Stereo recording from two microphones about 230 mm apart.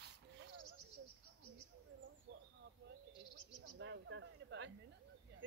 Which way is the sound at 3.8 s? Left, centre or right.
Right.